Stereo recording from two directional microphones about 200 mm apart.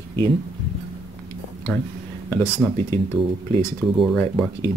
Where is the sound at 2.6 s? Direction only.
Centre (ahead or behind).